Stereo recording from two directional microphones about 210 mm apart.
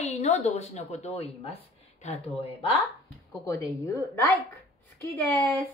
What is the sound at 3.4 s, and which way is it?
A woman's voice, 15° left (ahead or behind).